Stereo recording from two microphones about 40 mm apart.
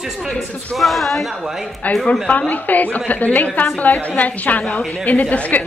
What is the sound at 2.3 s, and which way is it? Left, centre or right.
A woman's voice, left.